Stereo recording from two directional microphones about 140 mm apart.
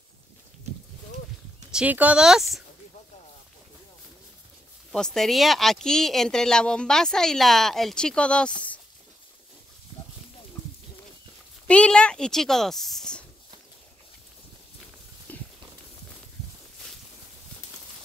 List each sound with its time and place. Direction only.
1.7 s speech: 10° right (ahead or behind)
4.9 s speech: 5° left (ahead or behind)
11.6 s speech: 10° left (ahead or behind)
15.3 s clip-clop: 10° left (ahead or behind)